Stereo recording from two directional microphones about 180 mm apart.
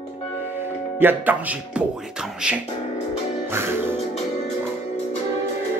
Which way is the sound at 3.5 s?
15° right (ahead or behind).